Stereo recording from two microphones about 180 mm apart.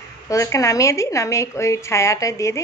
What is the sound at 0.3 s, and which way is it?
A woman's voice, 15° left (ahead or behind).